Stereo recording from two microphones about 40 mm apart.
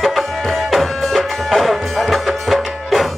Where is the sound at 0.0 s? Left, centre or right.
Centre.